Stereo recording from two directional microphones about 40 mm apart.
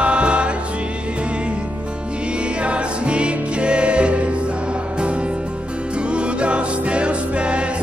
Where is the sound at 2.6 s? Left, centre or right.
Right.